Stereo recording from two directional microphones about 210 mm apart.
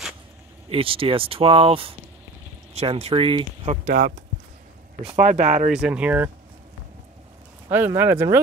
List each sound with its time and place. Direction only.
0.7 s speech: 25° right (ahead or behind)
3.8 s speech: 45° right (ahead or behind)
5.1 s speech: 35° right (ahead or behind)
5.7 s speech: 5° right (ahead or behind)
7.7 s speech: 10° right (ahead or behind)